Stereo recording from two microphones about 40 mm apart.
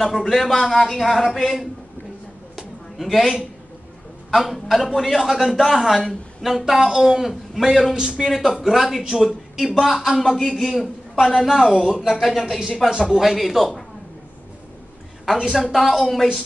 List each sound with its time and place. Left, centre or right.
0.2 s a man's voice: centre
2.5 s a sound: centre
4.3 s a man's voice: centre
12.9 s speech: centre
15.3 s a man's voice: centre